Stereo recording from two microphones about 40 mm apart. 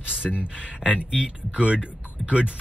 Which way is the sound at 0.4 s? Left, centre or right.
Right.